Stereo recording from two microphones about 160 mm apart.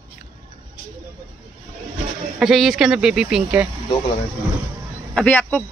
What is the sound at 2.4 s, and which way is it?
Speech, centre (ahead or behind).